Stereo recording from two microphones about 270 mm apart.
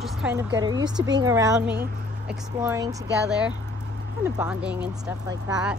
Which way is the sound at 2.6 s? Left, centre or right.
Centre.